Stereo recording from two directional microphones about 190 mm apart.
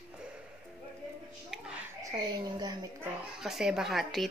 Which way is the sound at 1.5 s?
5° right (ahead or behind).